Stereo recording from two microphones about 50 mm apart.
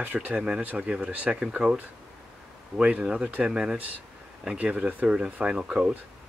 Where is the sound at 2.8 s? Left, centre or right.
Right.